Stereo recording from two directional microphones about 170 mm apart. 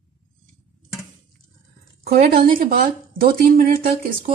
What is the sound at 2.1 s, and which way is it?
Speech, 55° right (ahead or behind).